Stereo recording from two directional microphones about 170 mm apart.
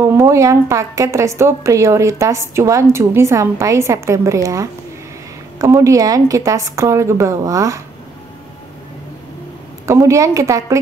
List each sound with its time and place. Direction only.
0.0 s a woman's voice: 15° right (ahead or behind)
9.8 s a woman's voice: 15° right (ahead or behind)